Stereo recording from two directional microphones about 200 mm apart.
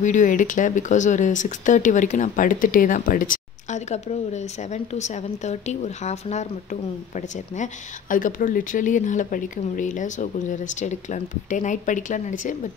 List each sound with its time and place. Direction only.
0.0 s speech: 40° left (ahead or behind)